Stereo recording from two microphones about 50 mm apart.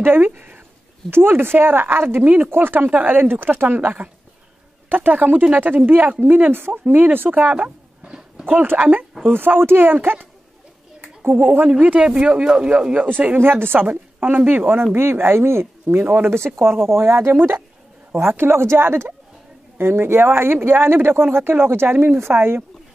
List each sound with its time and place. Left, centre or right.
0.0 s speech: right
1.1 s a woman's voice: right
8.5 s speech: right
11.2 s speech: right
12.0 s speech: centre
13.4 s speech: right
13.8 s speech: right
17.3 s speech: right